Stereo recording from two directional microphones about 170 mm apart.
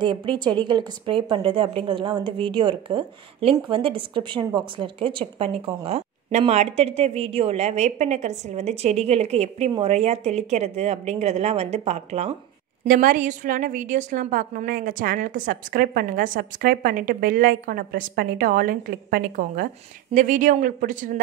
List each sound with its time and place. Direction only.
0.0 s a woman's voice: 30° right (ahead or behind)
12.8 s a woman's voice: 55° right (ahead or behind)